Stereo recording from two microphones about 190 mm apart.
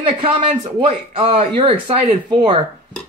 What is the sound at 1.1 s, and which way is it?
Speech, 30° right (ahead or behind).